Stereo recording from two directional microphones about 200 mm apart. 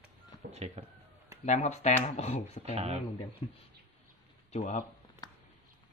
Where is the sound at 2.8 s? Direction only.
30° right (ahead or behind).